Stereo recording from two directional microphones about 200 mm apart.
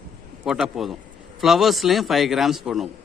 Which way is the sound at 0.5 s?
Centre (ahead or behind).